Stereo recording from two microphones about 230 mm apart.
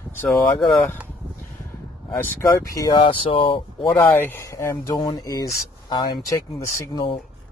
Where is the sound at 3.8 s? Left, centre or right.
Centre.